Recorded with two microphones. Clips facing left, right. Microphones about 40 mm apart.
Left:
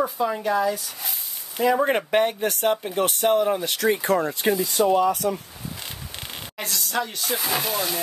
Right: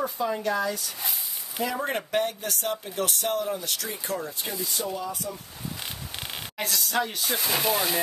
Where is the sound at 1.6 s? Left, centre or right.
Left.